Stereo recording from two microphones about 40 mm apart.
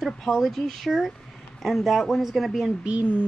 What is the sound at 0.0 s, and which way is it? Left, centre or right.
Speech, centre.